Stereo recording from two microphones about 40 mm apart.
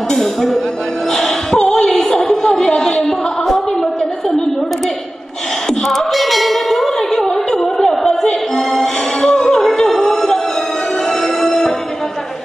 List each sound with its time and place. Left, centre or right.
0.1 s speech: centre
1.1 s a sound: centre
5.9 s music: centre
11.4 s music: centre